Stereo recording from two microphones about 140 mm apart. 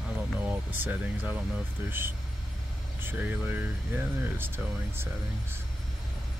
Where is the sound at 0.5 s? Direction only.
10° right (ahead or behind).